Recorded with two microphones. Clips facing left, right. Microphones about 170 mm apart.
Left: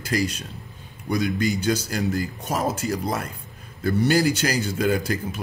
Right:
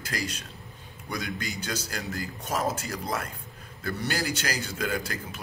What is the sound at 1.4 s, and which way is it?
A man's voice, 20° left (ahead or behind).